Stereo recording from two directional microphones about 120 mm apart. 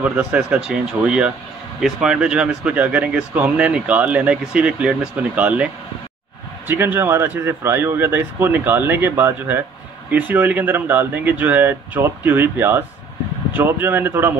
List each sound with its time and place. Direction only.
0.0 s speech: 10° right (ahead or behind)
6.7 s speech: 15° right (ahead or behind)